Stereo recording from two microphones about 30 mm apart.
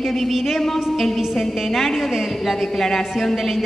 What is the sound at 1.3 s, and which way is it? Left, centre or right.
A man's voice, centre.